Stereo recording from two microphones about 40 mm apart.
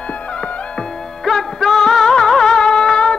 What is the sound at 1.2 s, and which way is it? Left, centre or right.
Music, centre.